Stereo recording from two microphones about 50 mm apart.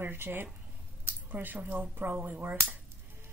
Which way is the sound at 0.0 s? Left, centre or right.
Right.